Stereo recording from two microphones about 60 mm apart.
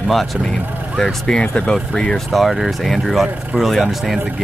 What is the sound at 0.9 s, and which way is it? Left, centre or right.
Speech, centre.